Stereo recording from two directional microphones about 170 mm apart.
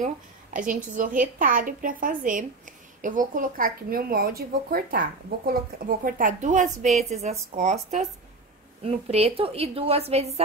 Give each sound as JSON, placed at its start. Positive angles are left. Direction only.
{"t": 0.0, "sound": "a woman's voice", "side_deg": -50}